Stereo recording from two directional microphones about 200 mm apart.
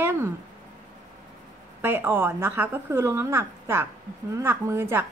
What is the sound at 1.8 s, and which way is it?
A woman's voice, 10° right (ahead or behind).